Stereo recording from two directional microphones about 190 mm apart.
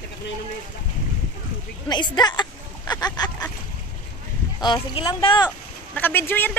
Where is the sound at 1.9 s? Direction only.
20° left (ahead or behind).